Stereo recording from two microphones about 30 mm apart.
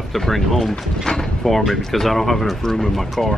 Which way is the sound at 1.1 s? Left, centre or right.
Left.